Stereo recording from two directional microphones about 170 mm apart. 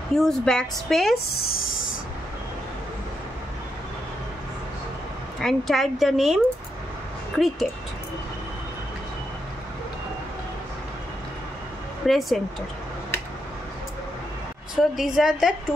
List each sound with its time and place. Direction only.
0.2 s speech: 5° left (ahead or behind)
1.1 s speech: 70° left (ahead or behind)
5.4 s speech: centre (ahead or behind)
12.1 s speech: centre (ahead or behind)
14.8 s speech: centre (ahead or behind)